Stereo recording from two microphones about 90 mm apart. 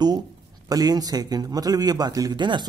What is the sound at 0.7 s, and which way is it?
Speech, 45° right (ahead or behind).